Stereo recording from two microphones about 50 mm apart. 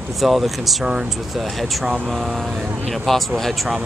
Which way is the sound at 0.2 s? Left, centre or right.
Centre.